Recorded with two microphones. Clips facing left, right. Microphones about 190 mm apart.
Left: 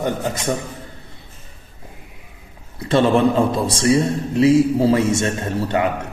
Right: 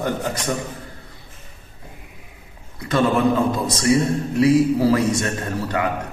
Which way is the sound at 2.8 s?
30° left (ahead or behind).